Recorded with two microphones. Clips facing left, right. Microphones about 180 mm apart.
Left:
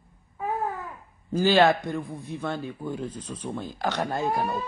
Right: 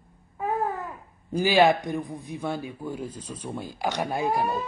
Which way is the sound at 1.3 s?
15° right (ahead or behind).